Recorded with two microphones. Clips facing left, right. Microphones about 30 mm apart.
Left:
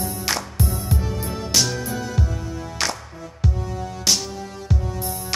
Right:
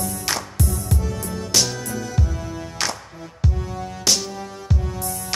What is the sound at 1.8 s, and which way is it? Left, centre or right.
Music, left.